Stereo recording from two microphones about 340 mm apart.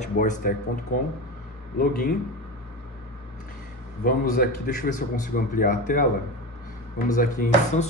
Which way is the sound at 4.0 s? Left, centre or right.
Left.